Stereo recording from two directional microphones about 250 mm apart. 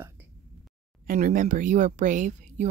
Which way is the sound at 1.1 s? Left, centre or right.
Right.